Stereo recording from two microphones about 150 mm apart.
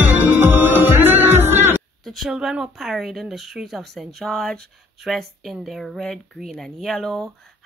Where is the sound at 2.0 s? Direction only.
Centre (ahead or behind).